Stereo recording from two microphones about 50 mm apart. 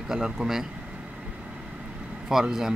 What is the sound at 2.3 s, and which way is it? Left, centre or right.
Speech, centre.